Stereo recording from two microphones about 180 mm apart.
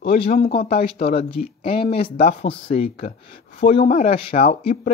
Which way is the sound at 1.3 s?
30° left (ahead or behind).